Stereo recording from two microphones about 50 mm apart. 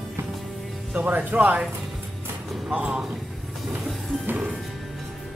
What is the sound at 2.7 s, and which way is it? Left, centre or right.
Speech, right.